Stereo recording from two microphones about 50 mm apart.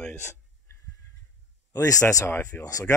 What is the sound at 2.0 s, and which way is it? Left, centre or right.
Speech, left.